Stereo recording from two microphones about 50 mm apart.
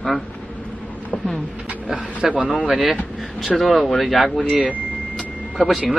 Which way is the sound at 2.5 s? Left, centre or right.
Centre.